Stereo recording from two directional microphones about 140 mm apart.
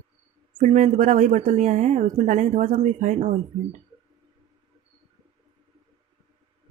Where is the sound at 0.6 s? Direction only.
60° right (ahead or behind).